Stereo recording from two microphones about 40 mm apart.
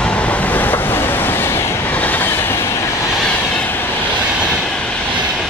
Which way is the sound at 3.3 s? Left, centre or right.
Left.